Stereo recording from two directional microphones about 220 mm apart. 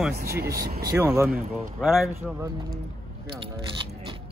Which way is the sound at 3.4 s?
25° right (ahead or behind).